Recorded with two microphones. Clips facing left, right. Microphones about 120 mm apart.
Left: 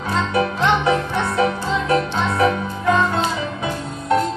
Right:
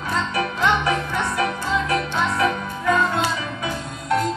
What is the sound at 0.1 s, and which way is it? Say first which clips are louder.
Music: left 4 dB; 30° left (ahead or behind).